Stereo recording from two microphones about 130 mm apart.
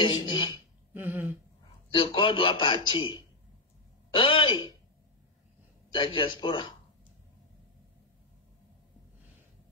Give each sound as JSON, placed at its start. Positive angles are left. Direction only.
{"t": 0.0, "sound": "a man's voice", "side_deg": 40}
{"t": 0.9, "sound": "a sound", "side_deg": -15}
{"t": 1.9, "sound": "a man's voice", "side_deg": 40}
{"t": 5.9, "sound": "a man's voice", "side_deg": 40}